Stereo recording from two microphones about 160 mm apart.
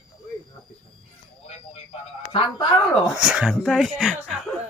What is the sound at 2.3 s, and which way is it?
Speech, 35° left (ahead or behind).